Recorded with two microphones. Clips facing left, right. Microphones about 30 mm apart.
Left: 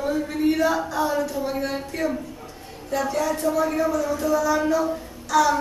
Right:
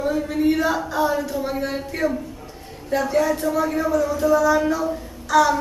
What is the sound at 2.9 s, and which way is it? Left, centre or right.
Speech, centre.